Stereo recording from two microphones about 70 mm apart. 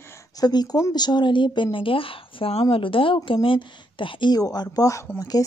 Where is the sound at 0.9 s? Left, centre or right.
Left.